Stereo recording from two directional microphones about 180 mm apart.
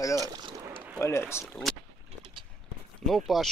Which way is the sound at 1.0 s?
15° left (ahead or behind).